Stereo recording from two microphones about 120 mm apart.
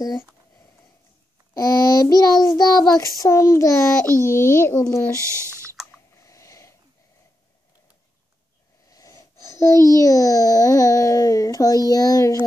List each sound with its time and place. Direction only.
1.5 s child singing: 30° left (ahead or behind)
2.9 s a child's voice: 30° left (ahead or behind)
5.1 s speech: 25° right (ahead or behind)
6.1 s a sound: 25° left (ahead or behind)
8.9 s wheeze: 30° left (ahead or behind)
9.9 s a child's voice: 25° left (ahead or behind)